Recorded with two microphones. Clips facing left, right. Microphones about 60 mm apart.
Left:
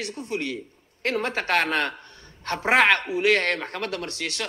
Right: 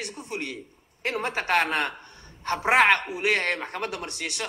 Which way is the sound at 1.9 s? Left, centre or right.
Centre.